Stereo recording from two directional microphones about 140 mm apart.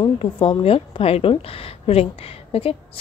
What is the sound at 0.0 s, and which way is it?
A woman's voice, 40° left (ahead or behind).